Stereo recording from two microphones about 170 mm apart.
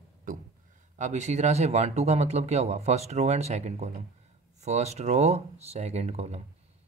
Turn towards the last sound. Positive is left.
turn(degrees=-40)  # may be behind; listen again after turning